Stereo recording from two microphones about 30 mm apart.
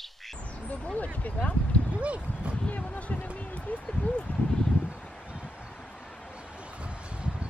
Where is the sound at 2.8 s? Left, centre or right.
Left.